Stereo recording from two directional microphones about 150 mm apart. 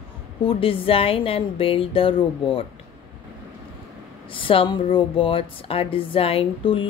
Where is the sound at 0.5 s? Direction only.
35° left (ahead or behind).